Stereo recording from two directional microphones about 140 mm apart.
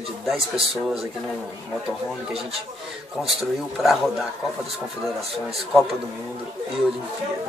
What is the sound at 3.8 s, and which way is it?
Speech, centre (ahead or behind).